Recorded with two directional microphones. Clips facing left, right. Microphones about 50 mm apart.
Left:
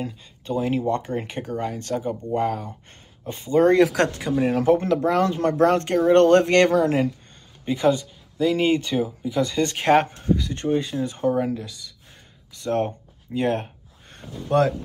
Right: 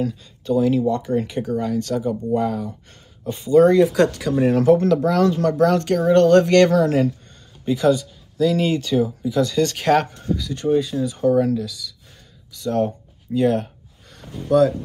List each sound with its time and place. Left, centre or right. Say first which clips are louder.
0.0 s speech: right 7 dB; left
4.3 s speech: right 4 dB; centre
4.6 s speech: right 3 dB; left
14.1 s speech: right 3 dB; left